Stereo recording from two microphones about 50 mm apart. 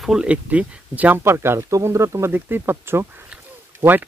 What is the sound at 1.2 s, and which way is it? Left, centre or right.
Speech, right.